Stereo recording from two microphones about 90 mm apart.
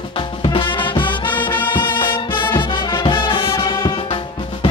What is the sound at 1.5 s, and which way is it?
Music, 20° left (ahead or behind).